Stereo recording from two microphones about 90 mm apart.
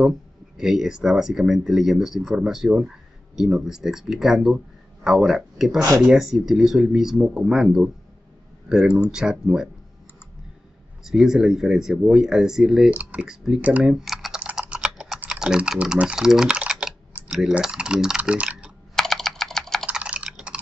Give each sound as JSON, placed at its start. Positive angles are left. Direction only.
{"t": 0.6, "sound": "speech", "side_deg": -5}
{"t": 11.1, "sound": "speech", "side_deg": -5}
{"t": 13.9, "sound": "typing", "side_deg": -5}
{"t": 15.1, "sound": "speech", "side_deg": -10}
{"t": 18.9, "sound": "typing", "side_deg": 5}
{"t": 19.9, "sound": "typing", "side_deg": -15}